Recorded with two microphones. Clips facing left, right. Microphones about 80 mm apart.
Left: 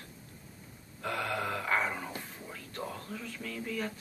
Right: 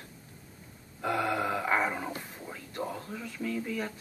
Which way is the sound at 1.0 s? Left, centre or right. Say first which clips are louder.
Right 5 dB; centre.